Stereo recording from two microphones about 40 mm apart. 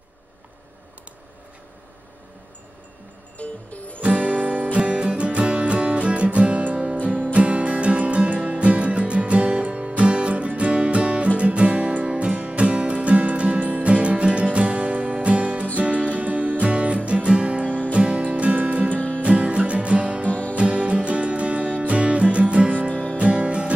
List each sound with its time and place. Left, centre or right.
3.3 s music: left
4.0 s music: right
13.8 s music: right
17.6 s music: left
17.9 s music: right
18.9 s music: left
19.2 s music: right
20.2 s music: left
20.5 s music: right